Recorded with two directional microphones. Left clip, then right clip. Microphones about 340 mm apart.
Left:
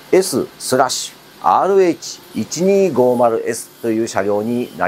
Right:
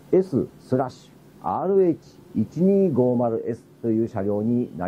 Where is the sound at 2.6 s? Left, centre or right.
Left.